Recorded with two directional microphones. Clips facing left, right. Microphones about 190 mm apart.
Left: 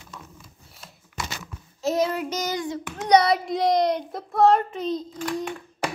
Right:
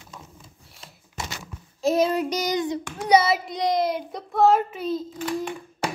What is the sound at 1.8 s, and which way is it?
Child singing, 10° right (ahead or behind).